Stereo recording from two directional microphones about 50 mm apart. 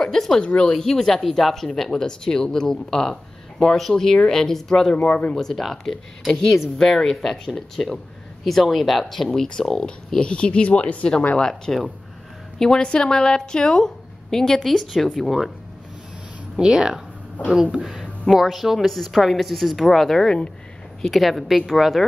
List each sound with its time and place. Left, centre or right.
0.0 s speech: centre
4.9 s speech: left
5.3 s a woman's voice: centre; by 11.1 s left
11.3 s a woman's voice: centre
16.5 s a woman's voice: centre
21.0 s a woman's voice: centre